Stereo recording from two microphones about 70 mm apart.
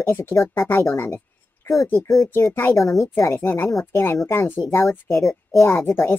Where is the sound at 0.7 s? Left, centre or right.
Left.